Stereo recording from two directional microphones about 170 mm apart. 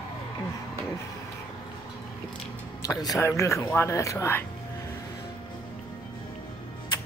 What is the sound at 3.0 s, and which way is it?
Speech, 20° left (ahead or behind).